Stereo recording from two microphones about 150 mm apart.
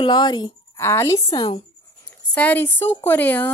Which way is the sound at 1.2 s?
30° left (ahead or behind).